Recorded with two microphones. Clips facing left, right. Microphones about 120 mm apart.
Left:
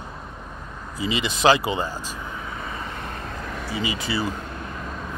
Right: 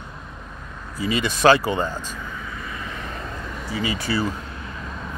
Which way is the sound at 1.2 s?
15° left (ahead or behind).